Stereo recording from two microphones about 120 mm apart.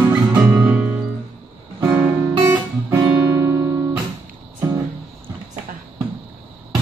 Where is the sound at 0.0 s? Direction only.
15° right (ahead or behind).